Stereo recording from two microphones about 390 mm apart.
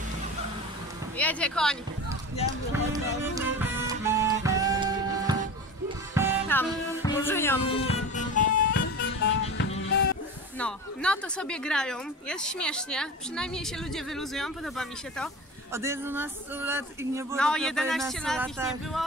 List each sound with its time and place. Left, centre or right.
1.1 s speech: centre
2.9 s music: centre
6.5 s music: centre; by 9.9 s left
10.6 s speech: centre